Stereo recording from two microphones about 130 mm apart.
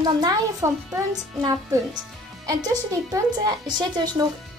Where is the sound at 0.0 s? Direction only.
30° right (ahead or behind).